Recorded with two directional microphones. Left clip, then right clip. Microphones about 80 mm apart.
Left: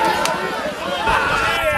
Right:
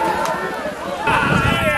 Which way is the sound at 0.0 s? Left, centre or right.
Centre.